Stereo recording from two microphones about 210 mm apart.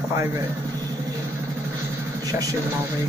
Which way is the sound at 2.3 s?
15° right (ahead or behind).